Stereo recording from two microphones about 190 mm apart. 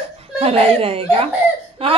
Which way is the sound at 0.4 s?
30° right (ahead or behind).